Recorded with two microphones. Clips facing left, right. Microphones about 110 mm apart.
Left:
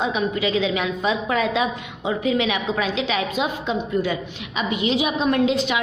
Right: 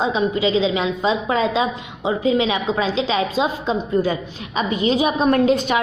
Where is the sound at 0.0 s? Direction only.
30° right (ahead or behind).